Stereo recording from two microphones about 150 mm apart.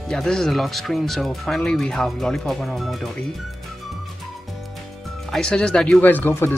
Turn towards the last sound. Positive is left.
turn(degrees=15)  # may be behind; listen again after turning